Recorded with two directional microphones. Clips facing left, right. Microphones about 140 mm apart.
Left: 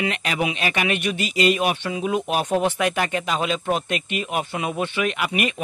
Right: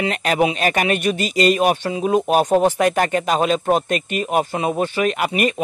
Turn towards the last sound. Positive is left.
turn(degrees=-40)  # may be behind; listen again after turning